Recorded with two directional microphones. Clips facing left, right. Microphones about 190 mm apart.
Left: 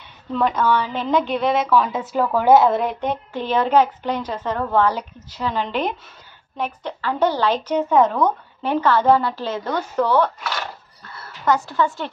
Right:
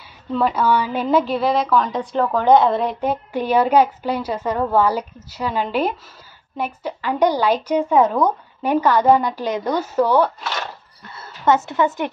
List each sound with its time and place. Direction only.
0.3 s a woman's voice: 5° right (ahead or behind)
11.1 s speech: 25° right (ahead or behind)